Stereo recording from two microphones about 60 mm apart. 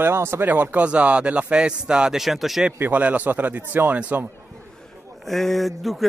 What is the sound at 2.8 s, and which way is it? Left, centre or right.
Speech, right.